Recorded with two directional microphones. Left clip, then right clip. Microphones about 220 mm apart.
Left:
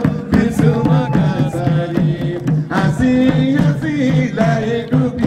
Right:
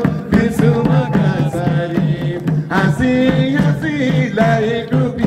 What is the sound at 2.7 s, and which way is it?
Music, 30° right (ahead or behind).